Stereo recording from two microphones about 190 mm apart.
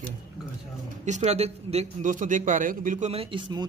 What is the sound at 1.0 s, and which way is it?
A man's voice, 40° right (ahead or behind).